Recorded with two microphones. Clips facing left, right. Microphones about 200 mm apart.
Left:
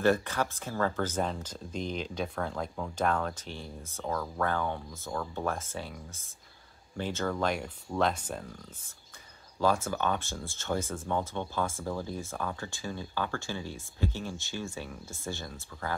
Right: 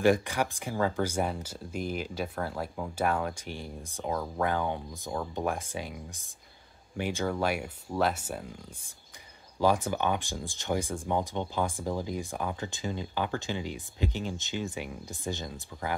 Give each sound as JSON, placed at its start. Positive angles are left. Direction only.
{"t": 0.0, "sound": "speech", "side_deg": -15}